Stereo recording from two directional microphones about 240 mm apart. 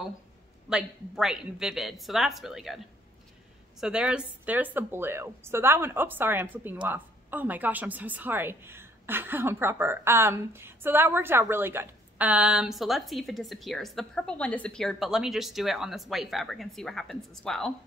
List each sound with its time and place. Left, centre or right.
0.7 s speech: centre
3.8 s a woman's voice: centre